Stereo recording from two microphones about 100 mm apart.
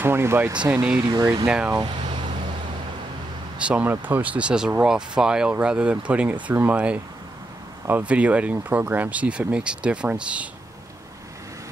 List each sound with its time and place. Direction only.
0.0 s speech: 25° right (ahead or behind)
1.0 s speech: 40° right (ahead or behind)
1.4 s speech: 10° right (ahead or behind)
3.5 s speech: 10° right (ahead or behind)